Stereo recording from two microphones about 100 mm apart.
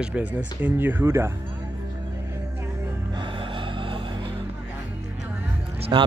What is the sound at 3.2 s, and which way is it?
Gasp, 55° right (ahead or behind).